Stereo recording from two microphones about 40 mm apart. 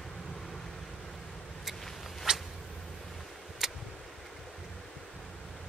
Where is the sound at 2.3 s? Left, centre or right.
Centre.